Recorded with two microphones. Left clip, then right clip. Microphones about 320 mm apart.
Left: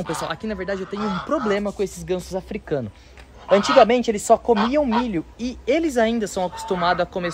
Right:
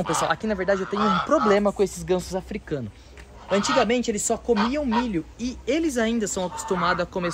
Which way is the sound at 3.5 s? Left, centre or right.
Left.